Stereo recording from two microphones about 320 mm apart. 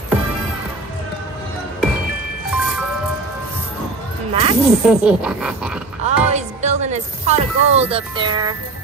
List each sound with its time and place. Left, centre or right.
2.5 s music: centre
4.3 s music: centre
4.6 s speech: centre
6.0 s speech: right